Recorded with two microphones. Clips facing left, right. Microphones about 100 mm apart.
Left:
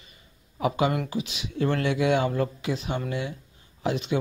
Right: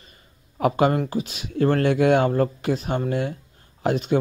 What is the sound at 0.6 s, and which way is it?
Speech, 50° right (ahead or behind).